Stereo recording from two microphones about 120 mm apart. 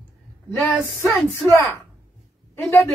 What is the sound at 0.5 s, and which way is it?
A woman's voice, 20° left (ahead or behind).